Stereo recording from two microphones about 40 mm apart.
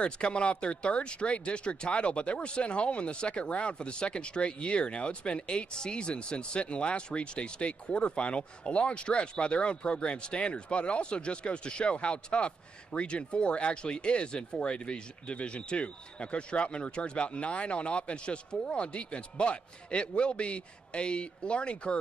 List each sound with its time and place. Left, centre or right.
0.0 s speech: left